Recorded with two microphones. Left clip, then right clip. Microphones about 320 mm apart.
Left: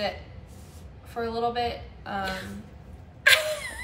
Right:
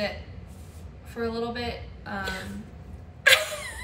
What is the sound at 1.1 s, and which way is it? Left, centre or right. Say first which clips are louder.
A woman's voice: left 3 dB; centre.